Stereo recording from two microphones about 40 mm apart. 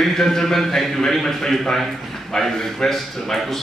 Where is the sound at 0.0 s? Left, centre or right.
Centre.